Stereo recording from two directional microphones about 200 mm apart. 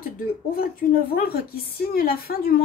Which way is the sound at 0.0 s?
45° left (ahead or behind).